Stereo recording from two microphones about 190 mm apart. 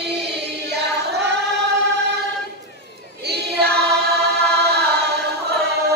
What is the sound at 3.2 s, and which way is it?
Choir, 60° right (ahead or behind).